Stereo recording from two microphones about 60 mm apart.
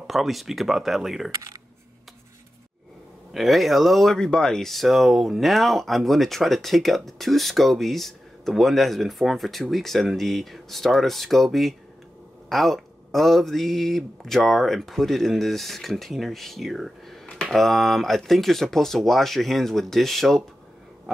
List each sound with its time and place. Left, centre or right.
0.0 s speech: centre
1.3 s speech: right
3.3 s speech: centre